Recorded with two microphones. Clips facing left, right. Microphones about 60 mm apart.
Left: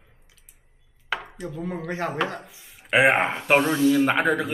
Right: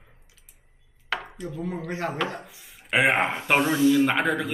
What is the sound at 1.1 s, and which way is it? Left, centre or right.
Chopping, centre.